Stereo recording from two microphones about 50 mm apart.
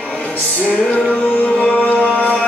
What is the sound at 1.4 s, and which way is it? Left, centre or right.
Music, left.